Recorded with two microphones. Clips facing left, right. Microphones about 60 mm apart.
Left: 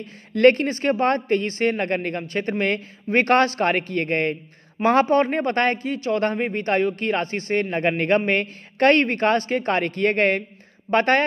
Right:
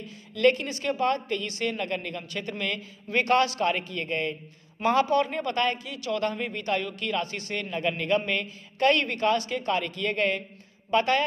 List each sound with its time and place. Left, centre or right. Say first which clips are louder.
0.0 s a man's voice: left 7 dB; left